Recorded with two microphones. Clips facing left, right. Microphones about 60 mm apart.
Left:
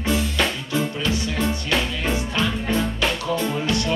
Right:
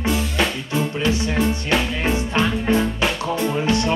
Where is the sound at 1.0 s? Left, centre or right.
Right.